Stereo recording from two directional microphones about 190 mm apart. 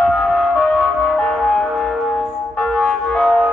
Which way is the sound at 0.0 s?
5° left (ahead or behind).